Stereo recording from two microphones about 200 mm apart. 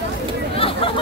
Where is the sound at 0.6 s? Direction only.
30° left (ahead or behind).